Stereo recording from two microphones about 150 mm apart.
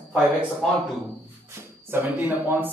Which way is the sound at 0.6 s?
5° left (ahead or behind).